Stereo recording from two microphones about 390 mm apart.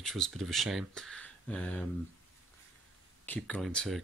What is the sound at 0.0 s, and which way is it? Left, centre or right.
Speech, centre.